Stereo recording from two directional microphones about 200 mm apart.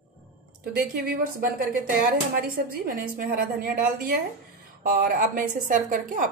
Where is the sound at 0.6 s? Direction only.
50° right (ahead or behind).